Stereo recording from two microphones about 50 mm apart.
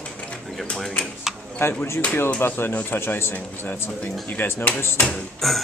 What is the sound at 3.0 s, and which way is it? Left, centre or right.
Speech, left.